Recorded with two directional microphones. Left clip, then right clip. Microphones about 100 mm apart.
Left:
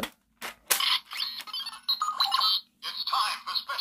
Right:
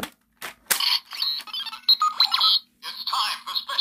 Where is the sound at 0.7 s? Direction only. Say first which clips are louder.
Right 3 dB; 15° right (ahead or behind).